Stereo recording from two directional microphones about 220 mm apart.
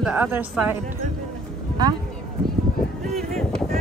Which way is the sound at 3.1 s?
Centre (ahead or behind).